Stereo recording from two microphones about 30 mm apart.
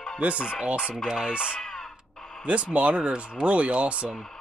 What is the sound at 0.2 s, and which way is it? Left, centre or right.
Speech, right.